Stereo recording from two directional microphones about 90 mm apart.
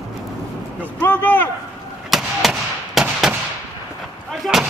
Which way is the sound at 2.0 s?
Centre (ahead or behind).